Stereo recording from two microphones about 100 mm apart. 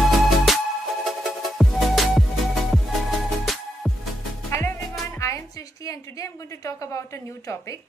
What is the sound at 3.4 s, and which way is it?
Music, centre (ahead or behind).